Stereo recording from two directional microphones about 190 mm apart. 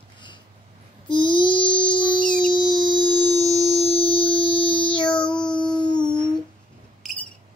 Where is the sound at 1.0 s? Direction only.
25° left (ahead or behind).